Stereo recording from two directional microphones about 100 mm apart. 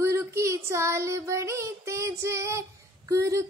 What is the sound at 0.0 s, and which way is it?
Child singing, 30° right (ahead or behind).